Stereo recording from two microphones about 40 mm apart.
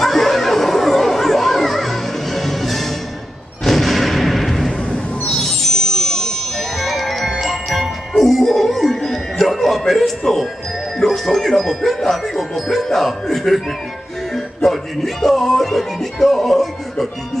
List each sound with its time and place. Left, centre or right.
0.0 s neigh: centre
3.6 s artillery fire: centre
4.9 s a sound: centre
5.4 s music: centre
7.2 s glockenspiel: centre
8.2 s music: centre